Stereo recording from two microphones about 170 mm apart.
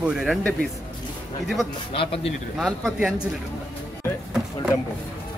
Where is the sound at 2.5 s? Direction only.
Centre (ahead or behind).